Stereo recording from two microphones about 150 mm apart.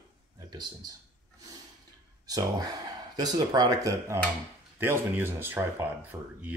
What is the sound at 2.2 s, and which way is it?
Speech, 25° right (ahead or behind).